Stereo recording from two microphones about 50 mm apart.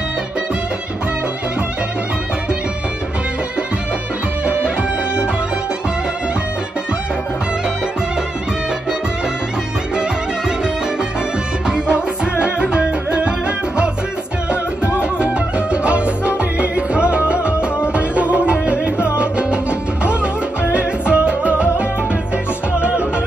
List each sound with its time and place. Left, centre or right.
4.5 s music: right
11.6 s music: centre
15.0 s music: right